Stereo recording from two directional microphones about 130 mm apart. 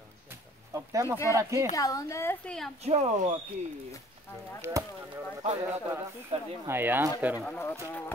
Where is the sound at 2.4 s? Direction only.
5° left (ahead or behind).